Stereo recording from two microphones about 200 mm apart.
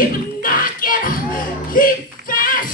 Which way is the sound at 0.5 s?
45° left (ahead or behind).